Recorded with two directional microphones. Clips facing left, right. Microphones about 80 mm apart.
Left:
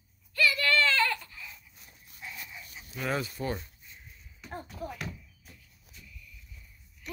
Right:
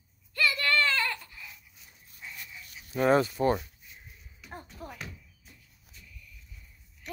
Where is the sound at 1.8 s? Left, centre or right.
Left.